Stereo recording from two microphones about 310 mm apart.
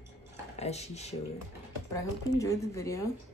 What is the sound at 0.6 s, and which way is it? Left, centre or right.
Speech, left.